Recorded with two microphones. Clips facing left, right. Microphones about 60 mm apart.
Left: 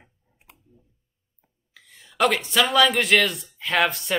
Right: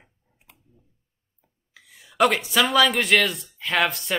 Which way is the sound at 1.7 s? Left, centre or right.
Centre.